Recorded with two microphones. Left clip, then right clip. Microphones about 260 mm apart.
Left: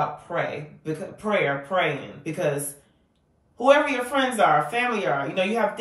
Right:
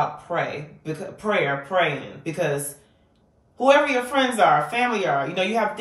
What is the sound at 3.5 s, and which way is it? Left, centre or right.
Speech, centre.